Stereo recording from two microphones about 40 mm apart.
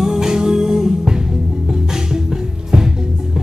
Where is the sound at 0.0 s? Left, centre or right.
Centre.